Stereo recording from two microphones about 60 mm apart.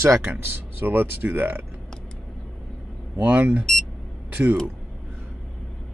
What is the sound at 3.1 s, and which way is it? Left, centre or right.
Speech, right.